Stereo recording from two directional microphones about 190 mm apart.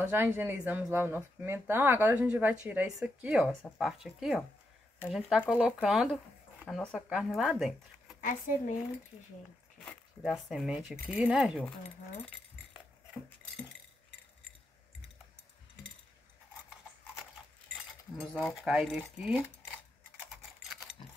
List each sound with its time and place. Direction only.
0.0 s speech: 10° right (ahead or behind)
8.2 s speech: 40° left (ahead or behind)
9.8 s speech: centre (ahead or behind)
18.3 s speech: centre (ahead or behind)